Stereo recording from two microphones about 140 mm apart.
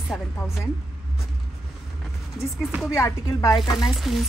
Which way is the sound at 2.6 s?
10° right (ahead or behind).